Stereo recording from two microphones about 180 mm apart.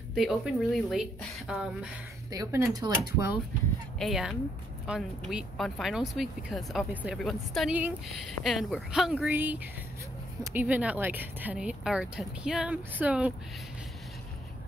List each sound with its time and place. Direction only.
0.1 s speech: centre (ahead or behind)
2.3 s speech: 20° right (ahead or behind)
4.0 s speech: centre (ahead or behind)